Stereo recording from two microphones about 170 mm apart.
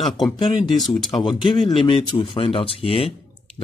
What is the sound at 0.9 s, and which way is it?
Speech, 30° left (ahead or behind).